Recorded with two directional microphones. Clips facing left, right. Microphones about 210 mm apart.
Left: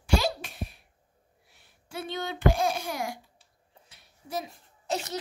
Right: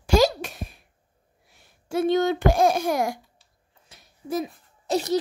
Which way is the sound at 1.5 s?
45° right (ahead or behind).